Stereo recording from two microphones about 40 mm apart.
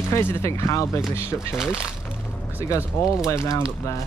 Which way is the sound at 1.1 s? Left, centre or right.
Left.